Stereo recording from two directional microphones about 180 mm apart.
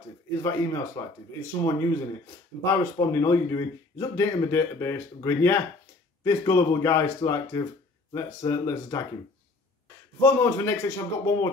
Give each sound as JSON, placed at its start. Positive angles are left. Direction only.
{"t": 0.4, "sound": "speech", "side_deg": 15}
{"t": 10.2, "sound": "speech", "side_deg": 15}